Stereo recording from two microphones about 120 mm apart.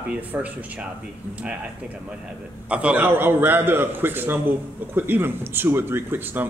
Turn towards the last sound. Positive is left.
turn(degrees=-15)  # may be behind; listen again after turning